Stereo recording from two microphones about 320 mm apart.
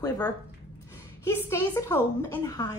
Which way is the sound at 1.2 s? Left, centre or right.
Centre.